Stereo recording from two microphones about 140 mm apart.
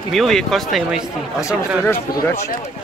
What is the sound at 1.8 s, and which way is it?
Speech, 15° left (ahead or behind).